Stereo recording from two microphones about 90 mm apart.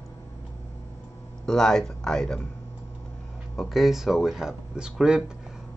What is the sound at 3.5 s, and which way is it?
Speech, centre (ahead or behind).